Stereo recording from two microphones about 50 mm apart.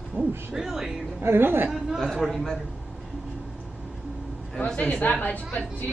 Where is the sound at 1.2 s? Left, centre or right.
Right.